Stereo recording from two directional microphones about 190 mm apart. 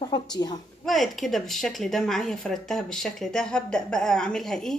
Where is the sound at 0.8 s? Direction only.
Centre (ahead or behind).